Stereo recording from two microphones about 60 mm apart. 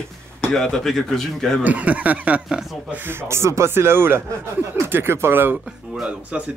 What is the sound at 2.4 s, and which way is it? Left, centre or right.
Speech, centre.